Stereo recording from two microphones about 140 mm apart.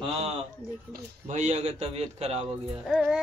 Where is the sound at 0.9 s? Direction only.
60° right (ahead or behind).